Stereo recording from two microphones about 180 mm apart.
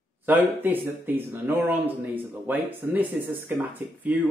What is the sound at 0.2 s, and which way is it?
Speech, 10° right (ahead or behind).